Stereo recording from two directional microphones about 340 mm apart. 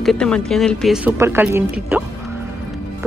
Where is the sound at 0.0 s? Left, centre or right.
Centre.